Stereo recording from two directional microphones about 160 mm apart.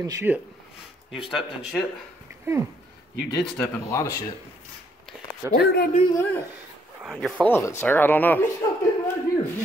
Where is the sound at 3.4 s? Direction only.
10° left (ahead or behind).